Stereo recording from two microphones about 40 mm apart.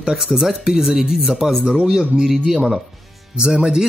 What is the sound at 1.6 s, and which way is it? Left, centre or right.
Speech, right.